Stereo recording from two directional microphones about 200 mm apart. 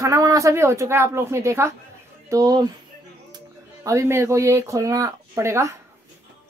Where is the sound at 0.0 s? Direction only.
15° right (ahead or behind).